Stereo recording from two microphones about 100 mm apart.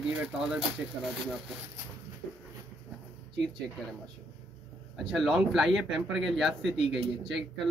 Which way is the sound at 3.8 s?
5° left (ahead or behind).